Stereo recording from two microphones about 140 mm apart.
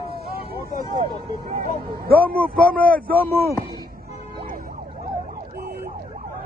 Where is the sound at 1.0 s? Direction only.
90° right.